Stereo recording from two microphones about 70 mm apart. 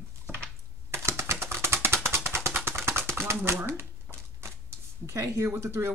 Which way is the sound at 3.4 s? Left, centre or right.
Right.